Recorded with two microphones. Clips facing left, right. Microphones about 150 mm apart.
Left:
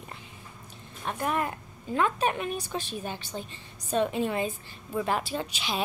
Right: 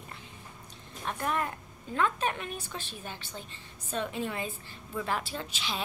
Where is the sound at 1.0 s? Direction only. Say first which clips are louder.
Left 3 dB; 10° left (ahead or behind).